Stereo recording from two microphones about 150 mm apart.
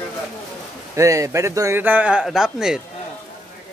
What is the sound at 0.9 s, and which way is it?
A man's voice, 20° right (ahead or behind).